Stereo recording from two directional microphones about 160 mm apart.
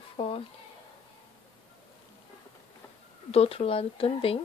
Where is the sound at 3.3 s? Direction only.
40° left (ahead or behind).